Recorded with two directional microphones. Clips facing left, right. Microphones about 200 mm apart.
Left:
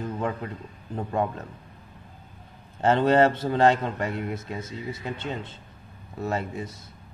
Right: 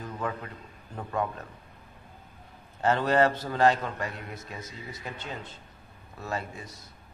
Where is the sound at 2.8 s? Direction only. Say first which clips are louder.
Left 4 dB; 25° left (ahead or behind).